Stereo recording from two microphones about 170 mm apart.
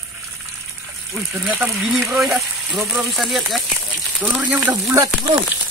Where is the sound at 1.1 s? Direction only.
Centre (ahead or behind).